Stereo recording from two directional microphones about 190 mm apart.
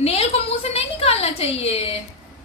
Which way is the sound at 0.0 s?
35° left (ahead or behind).